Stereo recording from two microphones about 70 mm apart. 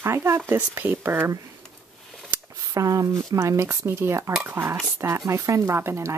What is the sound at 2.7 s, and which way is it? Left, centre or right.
Speech, right.